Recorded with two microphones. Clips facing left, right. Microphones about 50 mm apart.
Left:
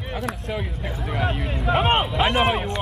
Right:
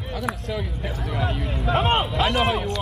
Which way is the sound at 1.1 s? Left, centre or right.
Centre.